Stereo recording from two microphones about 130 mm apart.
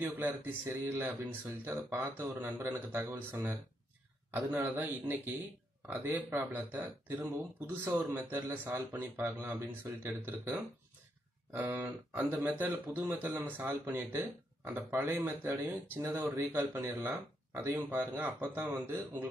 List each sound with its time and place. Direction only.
0.0 s speech: 15° right (ahead or behind)